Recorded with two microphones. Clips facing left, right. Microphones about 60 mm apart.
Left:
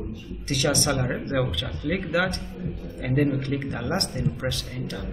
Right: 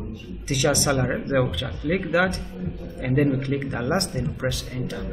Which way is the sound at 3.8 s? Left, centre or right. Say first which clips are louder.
Right 3 dB; centre.